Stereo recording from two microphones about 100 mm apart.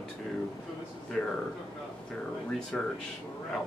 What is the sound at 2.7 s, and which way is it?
Speech, 10° left (ahead or behind).